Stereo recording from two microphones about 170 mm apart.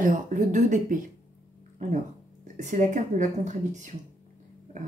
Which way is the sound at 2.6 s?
45° right (ahead or behind).